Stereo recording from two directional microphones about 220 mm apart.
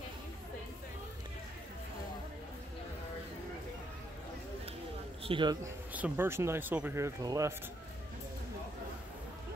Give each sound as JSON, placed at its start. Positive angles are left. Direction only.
{"t": 5.2, "sound": "a man's voice", "side_deg": -20}
{"t": 5.9, "sound": "speech", "side_deg": -10}